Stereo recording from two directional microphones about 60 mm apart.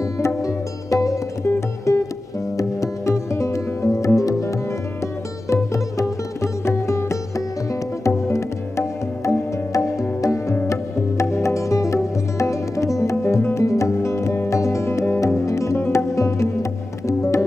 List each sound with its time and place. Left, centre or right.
0.4 s music: left